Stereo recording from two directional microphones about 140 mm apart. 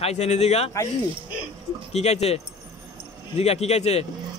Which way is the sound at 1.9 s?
50° left (ahead or behind).